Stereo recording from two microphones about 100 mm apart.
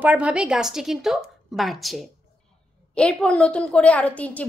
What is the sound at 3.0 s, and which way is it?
A woman's voice, 10° left (ahead or behind).